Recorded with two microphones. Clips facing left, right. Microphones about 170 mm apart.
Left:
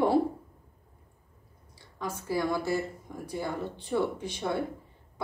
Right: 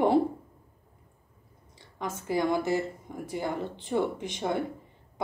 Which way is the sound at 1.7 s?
20° right (ahead or behind).